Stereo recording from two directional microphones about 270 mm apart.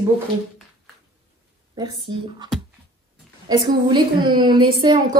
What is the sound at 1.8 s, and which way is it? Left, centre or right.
A woman's voice, centre.